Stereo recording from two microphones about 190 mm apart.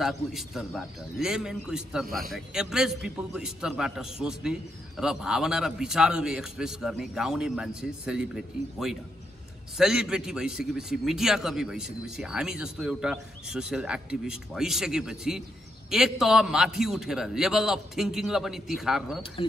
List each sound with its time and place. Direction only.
0.0 s a man's voice: centre (ahead or behind)
2.0 s a man's voice: 50° right (ahead or behind)
2.3 s a man's voice: 5° right (ahead or behind)